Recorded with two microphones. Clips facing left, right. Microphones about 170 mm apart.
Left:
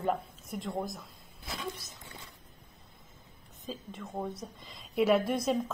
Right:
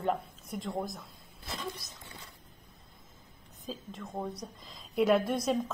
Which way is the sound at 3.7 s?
Centre (ahead or behind).